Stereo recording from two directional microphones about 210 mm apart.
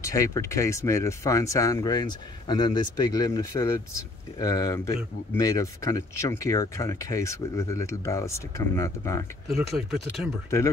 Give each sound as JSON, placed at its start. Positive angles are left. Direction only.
{"t": 0.0, "sound": "speech", "side_deg": 15}
{"t": 9.5, "sound": "speech", "side_deg": 0}